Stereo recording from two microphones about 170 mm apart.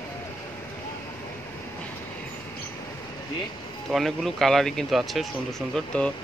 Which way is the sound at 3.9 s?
Centre (ahead or behind).